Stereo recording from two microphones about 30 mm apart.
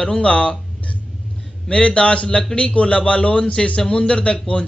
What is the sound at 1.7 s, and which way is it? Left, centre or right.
Speech, left.